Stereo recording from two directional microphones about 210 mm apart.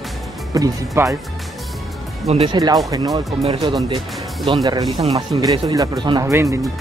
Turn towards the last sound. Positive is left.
turn(degrees=-15)  # may be behind; listen again after turning